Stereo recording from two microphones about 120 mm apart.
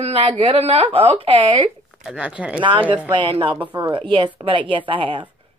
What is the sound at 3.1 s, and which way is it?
A woman's voice, 45° right (ahead or behind).